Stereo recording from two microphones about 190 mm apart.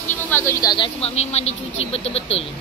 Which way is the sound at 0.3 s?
15° left (ahead or behind).